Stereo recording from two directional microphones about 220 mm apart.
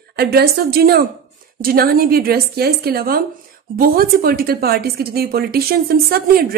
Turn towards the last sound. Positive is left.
turn(degrees=-45)  # may be behind; listen again after turning